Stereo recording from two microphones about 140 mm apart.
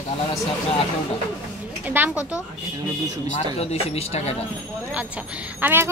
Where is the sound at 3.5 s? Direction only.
45° left (ahead or behind).